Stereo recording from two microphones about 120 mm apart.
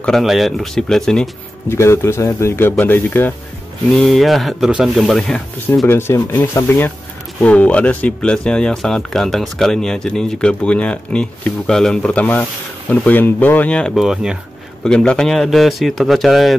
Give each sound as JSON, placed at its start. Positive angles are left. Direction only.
{"t": 0.0, "sound": "speech", "side_deg": 0}
{"t": 1.7, "sound": "speech", "side_deg": 20}
{"t": 3.9, "sound": "speech", "side_deg": 0}
{"t": 5.9, "sound": "speech", "side_deg": 20}
{"t": 14.9, "sound": "speech", "side_deg": 5}